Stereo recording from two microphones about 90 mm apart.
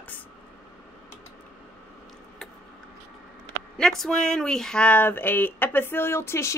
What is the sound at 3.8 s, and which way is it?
Speech, 5° left (ahead or behind).